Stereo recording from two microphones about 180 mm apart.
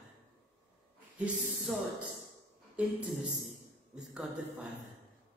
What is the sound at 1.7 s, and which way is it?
A woman's voice, centre (ahead or behind).